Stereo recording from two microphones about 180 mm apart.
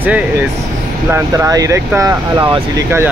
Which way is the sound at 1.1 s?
15° right (ahead or behind).